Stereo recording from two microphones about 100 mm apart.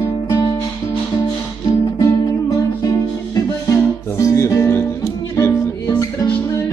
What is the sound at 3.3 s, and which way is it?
Music, 30° left (ahead or behind).